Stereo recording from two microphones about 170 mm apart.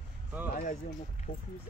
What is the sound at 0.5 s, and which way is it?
Speech, 50° left (ahead or behind).